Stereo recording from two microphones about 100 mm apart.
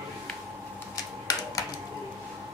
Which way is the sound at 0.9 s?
35° left (ahead or behind).